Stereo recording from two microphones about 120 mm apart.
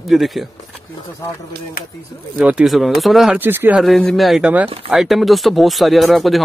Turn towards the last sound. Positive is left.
turn(degrees=0)  # may be behind; listen again after turning